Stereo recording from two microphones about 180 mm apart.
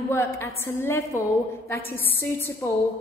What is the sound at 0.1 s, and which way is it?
A woman's voice, 15° left (ahead or behind).